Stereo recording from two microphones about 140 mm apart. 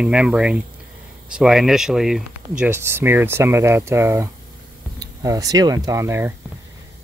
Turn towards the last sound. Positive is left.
turn(degrees=-15)  # may be behind; listen again after turning